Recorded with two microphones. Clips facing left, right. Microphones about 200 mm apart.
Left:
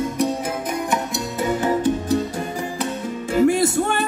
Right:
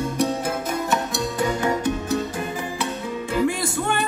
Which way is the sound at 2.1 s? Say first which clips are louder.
Left 3 dB; 40° left (ahead or behind).